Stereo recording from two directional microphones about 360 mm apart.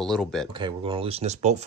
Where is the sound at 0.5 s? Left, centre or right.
Centre.